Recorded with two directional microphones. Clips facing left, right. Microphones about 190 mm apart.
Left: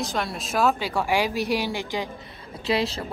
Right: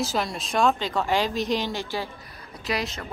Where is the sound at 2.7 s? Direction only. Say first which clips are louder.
Left 5 dB; 30° left (ahead or behind).